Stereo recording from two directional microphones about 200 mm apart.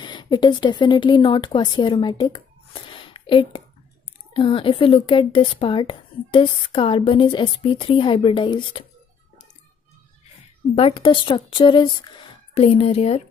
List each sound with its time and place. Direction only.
0.0 s a woman's voice: 20° left (ahead or behind)
10.7 s a woman's voice: 30° left (ahead or behind)